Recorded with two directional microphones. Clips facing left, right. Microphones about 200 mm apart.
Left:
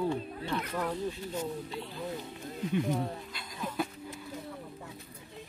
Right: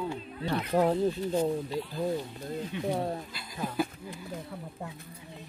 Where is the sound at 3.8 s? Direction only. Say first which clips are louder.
Right 4 dB; 5° right (ahead or behind).